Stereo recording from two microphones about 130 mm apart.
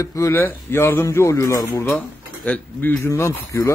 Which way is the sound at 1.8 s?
10° left (ahead or behind).